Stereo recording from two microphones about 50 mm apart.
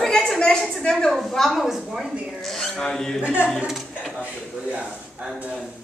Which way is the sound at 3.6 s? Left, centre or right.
Centre.